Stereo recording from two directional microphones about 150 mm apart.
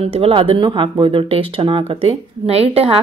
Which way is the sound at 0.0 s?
40° right (ahead or behind).